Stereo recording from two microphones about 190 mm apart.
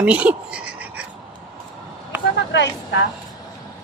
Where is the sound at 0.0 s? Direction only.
5° right (ahead or behind).